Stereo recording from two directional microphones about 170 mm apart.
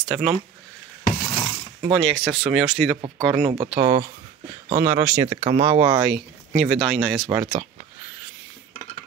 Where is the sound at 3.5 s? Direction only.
25° right (ahead or behind).